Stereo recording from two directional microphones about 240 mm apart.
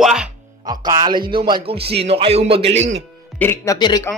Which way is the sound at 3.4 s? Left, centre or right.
Centre.